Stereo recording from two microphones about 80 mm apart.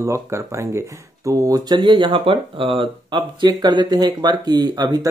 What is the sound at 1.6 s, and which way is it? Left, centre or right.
Speech, right.